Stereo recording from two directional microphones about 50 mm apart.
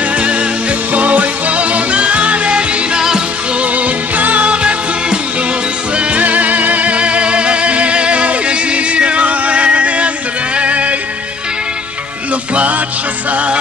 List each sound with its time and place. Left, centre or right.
0.2 s music: right
3.7 s music: right
13.3 s music: right